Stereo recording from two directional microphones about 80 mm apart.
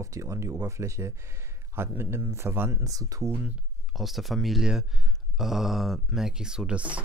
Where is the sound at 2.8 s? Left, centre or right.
Right.